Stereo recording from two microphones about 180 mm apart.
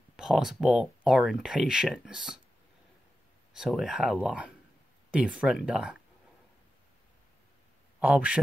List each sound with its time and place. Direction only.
0.1 s speech: centre (ahead or behind)
3.5 s speech: centre (ahead or behind)
8.0 s speech: 5° right (ahead or behind)